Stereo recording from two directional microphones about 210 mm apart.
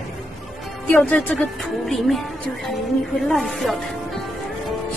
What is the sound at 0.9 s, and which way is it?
Speech, 5° left (ahead or behind).